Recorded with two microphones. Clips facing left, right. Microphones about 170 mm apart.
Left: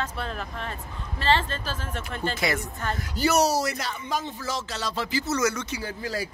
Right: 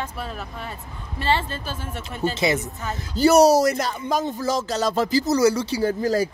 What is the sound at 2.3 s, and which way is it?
Speech, 25° right (ahead or behind).